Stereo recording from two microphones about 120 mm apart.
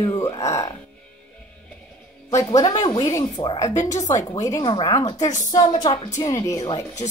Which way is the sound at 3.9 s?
90° left.